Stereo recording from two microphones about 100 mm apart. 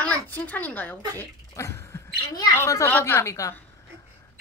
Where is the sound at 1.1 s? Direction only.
30° left (ahead or behind).